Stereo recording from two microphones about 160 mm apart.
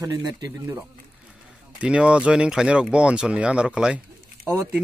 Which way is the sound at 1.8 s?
5° right (ahead or behind).